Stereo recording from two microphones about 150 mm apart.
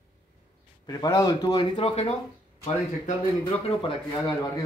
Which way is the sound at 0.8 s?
25° left (ahead or behind).